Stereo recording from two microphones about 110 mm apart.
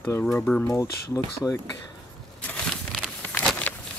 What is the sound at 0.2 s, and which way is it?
Speech, 15° left (ahead or behind).